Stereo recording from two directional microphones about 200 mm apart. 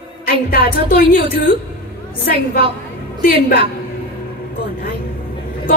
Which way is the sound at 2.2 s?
45° left (ahead or behind).